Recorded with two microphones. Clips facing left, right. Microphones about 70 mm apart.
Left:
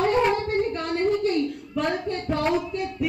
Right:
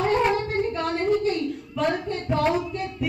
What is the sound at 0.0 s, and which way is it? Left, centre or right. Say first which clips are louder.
Child singing: even; centre.